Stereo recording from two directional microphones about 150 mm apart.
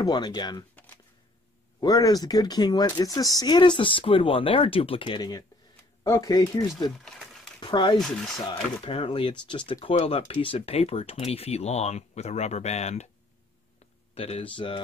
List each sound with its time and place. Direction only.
0.0 s speech: 30° left (ahead or behind)
1.8 s speech: 25° left (ahead or behind)
8.0 s speech: centre (ahead or behind)
8.8 s speech: 40° left (ahead or behind)
14.1 s speech: 40° left (ahead or behind)